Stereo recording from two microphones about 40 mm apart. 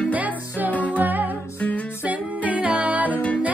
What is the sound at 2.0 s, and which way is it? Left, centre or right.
Music, right.